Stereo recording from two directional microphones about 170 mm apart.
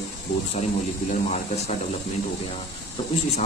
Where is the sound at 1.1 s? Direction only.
40° left (ahead or behind).